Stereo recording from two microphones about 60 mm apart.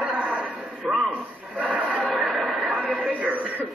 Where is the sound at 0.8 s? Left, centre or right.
Centre.